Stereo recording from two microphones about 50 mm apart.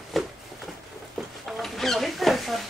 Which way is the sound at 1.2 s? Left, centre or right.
Centre.